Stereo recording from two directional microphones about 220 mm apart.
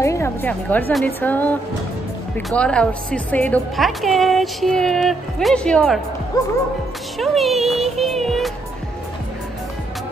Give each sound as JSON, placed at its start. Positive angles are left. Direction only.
{"t": 0.0, "sound": "a woman's voice", "side_deg": 10}
{"t": 6.4, "sound": "a woman's voice", "side_deg": 15}
{"t": 7.2, "sound": "a woman's voice", "side_deg": 0}